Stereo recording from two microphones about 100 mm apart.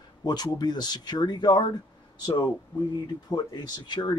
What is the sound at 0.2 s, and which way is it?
Speech, 45° left (ahead or behind).